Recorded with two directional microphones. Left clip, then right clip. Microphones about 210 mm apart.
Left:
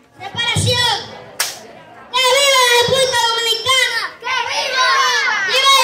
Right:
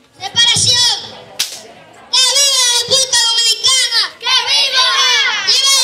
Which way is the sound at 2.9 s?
25° left (ahead or behind).